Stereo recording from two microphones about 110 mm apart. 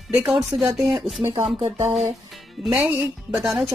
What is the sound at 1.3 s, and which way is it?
Speech, 45° right (ahead or behind).